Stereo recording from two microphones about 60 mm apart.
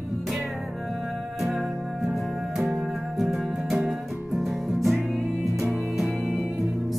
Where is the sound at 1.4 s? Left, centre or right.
Centre.